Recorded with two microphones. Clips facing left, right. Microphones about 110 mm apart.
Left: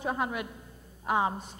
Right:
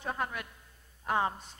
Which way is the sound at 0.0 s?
10° left (ahead or behind).